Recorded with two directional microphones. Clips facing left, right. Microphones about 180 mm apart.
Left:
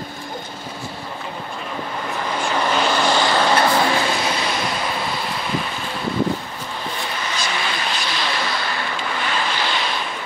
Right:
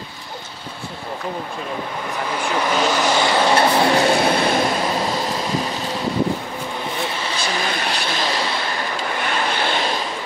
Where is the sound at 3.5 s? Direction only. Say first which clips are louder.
Right 2 dB; 30° right (ahead or behind).